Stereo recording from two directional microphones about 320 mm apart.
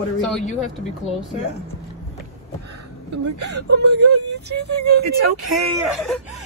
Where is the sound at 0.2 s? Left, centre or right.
Centre.